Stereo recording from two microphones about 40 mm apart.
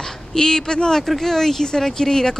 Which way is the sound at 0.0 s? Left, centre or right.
Centre.